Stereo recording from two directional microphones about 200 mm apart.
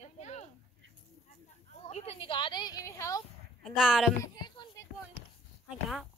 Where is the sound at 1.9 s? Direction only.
30° left (ahead or behind); by 3.2 s 15° left (ahead or behind).